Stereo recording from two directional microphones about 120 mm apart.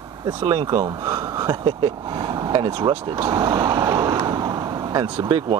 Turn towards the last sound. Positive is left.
turn(degrees=-40)  # may be behind; listen again after turning